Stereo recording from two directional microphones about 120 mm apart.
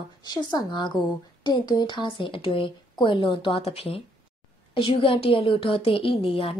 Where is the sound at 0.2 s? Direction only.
35° left (ahead or behind).